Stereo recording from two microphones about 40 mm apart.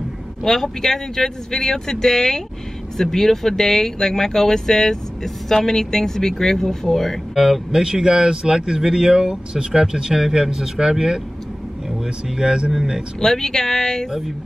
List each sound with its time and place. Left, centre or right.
0.4 s speech: centre
7.3 s speech: centre
7.8 s speech: centre
12.4 s speech: right
13.2 s speech: centre